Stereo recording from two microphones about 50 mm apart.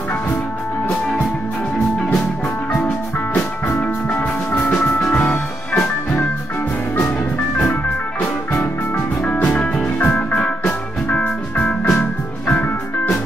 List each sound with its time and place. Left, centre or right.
4.1 s music: left
8.9 s music: left